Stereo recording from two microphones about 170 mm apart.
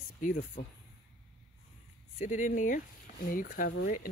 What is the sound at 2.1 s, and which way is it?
Speech, 45° left (ahead or behind).